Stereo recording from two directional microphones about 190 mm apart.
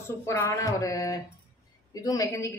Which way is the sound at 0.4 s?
15° left (ahead or behind).